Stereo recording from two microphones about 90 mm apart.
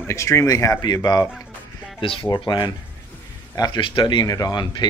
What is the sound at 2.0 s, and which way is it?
Speech, 80° left.